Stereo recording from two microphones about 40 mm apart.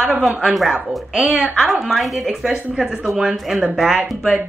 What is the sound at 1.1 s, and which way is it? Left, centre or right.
Speech, right.